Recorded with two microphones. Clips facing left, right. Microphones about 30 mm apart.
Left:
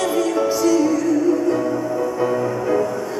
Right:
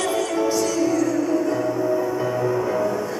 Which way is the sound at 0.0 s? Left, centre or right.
Centre.